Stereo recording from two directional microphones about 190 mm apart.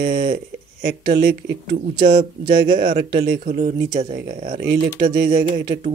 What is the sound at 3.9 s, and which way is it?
Speech, 35° right (ahead or behind).